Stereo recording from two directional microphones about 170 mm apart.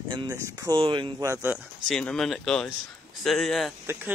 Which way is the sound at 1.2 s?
15° right (ahead or behind).